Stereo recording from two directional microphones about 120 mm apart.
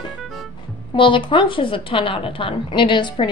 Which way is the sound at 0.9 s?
45° left (ahead or behind).